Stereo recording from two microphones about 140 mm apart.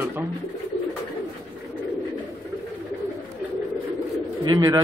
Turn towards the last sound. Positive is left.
turn(degrees=-25)  # may be behind; listen again after turning